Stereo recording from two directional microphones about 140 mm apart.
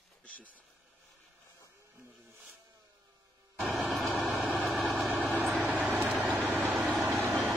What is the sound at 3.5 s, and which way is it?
Vehicle, centre (ahead or behind).